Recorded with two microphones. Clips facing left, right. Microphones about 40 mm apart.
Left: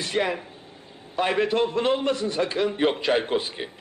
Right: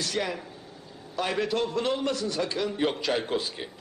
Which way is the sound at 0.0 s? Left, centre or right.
Left.